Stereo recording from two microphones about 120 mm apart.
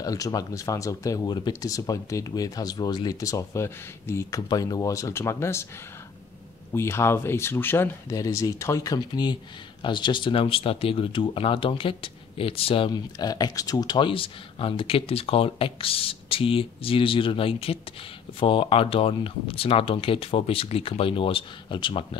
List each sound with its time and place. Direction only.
0.0 s speech: 30° left (ahead or behind)
6.7 s speech: 20° left (ahead or behind); by 22.0 s 45° left (ahead or behind)